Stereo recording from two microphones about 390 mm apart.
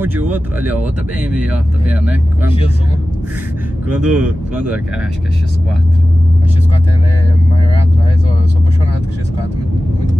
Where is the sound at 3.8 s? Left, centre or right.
Centre.